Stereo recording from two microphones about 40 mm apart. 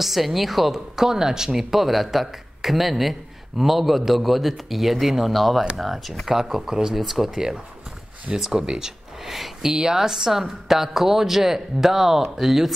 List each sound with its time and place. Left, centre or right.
0.0 s speech: centre
6.7 s speech: centre
7.0 s speech: centre
7.2 s speech: centre
9.7 s speech: centre